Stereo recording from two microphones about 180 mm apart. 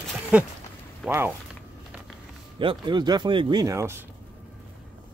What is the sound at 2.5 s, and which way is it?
Speech, 25° right (ahead or behind).